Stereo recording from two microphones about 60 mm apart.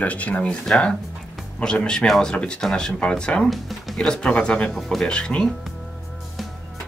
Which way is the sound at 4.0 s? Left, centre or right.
Centre.